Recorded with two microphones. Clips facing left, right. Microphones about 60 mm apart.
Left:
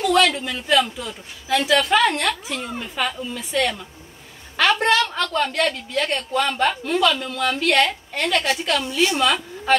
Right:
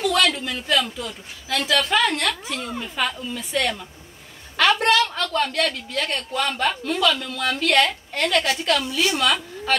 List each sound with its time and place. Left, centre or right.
0.3 s a woman's voice: centre
2.5 s a woman's voice: centre
4.7 s a sound: centre
5.3 s a woman's voice: centre
8.8 s speech: left
9.2 s a woman's voice: centre